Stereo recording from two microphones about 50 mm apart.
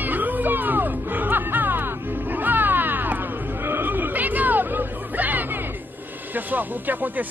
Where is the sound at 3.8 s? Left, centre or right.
Right.